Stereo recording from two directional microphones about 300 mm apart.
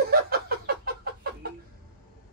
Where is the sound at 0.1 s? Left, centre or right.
Right.